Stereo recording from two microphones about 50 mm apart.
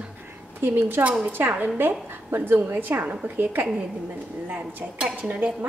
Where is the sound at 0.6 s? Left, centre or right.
Right.